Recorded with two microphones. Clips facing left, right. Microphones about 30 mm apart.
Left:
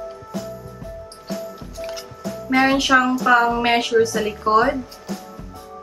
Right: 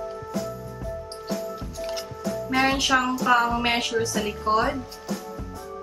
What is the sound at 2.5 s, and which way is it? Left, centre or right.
Speech, left.